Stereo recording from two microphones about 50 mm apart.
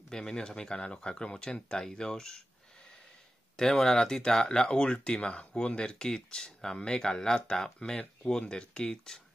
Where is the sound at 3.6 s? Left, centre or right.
Centre.